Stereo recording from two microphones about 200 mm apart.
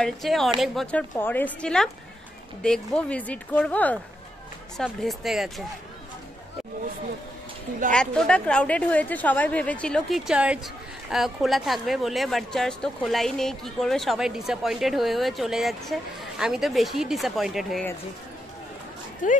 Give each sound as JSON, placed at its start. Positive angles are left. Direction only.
{"t": 0.0, "sound": "a woman's voice", "side_deg": 0}
{"t": 7.9, "sound": "a woman's voice", "side_deg": 5}
{"t": 19.2, "sound": "speech", "side_deg": 40}